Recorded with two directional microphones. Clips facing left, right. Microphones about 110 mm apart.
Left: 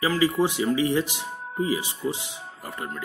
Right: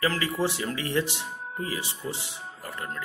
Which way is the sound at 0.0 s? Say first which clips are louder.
Left 5 dB; 15° left (ahead or behind).